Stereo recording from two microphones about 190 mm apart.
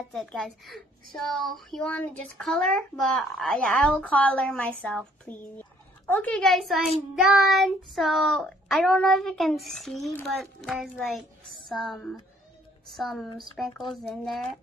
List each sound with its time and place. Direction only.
0.1 s speech: centre (ahead or behind)